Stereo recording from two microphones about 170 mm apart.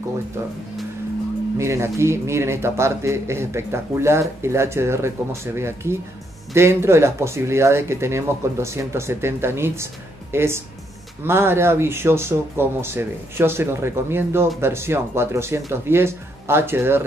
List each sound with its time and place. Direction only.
1.6 s a man's voice: 15° right (ahead or behind)